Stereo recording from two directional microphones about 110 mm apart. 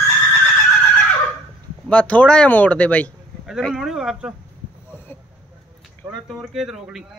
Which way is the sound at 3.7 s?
5° right (ahead or behind).